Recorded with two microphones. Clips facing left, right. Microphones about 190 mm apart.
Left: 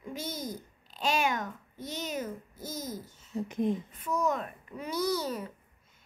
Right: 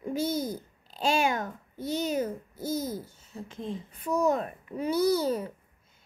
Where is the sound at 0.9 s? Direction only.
30° right (ahead or behind).